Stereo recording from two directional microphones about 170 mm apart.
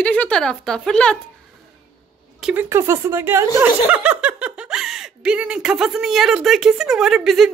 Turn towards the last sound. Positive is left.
turn(degrees=0)  # may be behind; listen again after turning